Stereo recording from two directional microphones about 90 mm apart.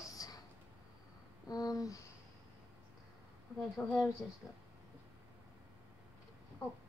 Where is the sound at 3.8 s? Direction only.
20° left (ahead or behind).